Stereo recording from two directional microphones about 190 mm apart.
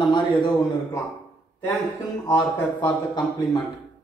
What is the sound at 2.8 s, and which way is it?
Speech, 20° left (ahead or behind).